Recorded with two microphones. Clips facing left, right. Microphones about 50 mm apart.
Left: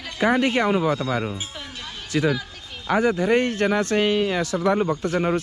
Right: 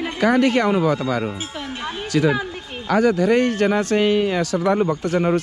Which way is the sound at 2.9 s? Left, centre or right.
Left.